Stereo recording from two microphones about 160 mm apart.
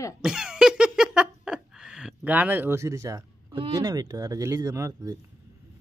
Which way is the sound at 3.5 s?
30° right (ahead or behind).